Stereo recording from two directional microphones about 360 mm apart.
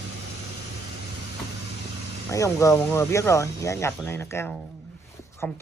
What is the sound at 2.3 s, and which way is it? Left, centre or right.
Speech, centre.